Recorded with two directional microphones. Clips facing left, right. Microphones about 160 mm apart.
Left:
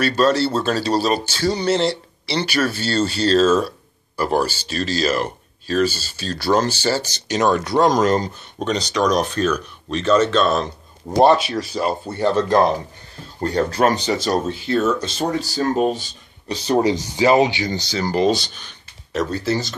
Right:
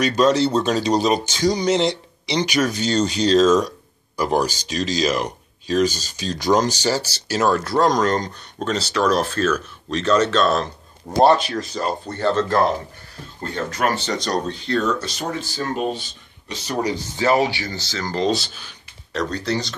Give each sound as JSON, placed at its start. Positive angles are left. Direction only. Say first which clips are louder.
{"t": 0.2, "sound": "speech", "louder": "right 1 dB", "side_deg": -20}
{"t": 3.3, "sound": "speech", "louder": "right 1 dB", "side_deg": 5}
{"t": 4.2, "sound": "speech", "louder": "even", "side_deg": -15}
{"t": 13.4, "sound": "speech", "louder": "left 6 dB", "side_deg": 40}
{"t": 13.9, "sound": "speech", "louder": "left 3 dB", "side_deg": 10}
{"t": 15.4, "sound": "speech", "louder": "left 5 dB", "side_deg": 40}
{"t": 17.2, "sound": "speech", "louder": "left 3 dB", "side_deg": 15}
{"t": 18.3, "sound": "speech", "louder": "left 1 dB", "side_deg": -5}